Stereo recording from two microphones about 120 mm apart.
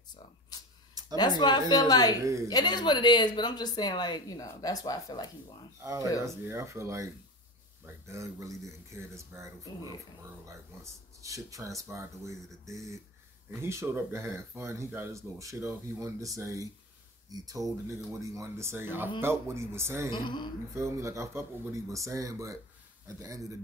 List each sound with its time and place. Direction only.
0.5 s a sound: 35° left (ahead or behind)
1.1 s speech: 35° left (ahead or behind)
2.2 s speech: 25° right (ahead or behind)
2.5 s speech: 35° left (ahead or behind)
5.8 s speech: 25° right (ahead or behind)
20.1 s speech: 40° left (ahead or behind)
20.7 s speech: 25° right (ahead or behind)